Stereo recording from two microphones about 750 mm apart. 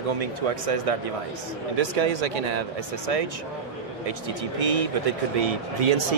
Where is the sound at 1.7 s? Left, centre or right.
Right.